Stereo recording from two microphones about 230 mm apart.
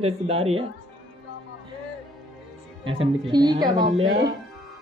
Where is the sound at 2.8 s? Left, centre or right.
Centre.